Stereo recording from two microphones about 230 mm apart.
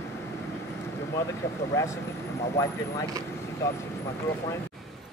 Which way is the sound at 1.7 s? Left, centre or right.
Centre.